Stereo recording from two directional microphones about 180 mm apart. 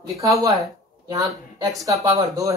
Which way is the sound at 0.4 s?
20° right (ahead or behind).